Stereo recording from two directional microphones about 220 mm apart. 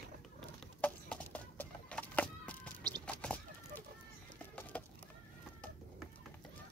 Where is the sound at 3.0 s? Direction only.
5° left (ahead or behind).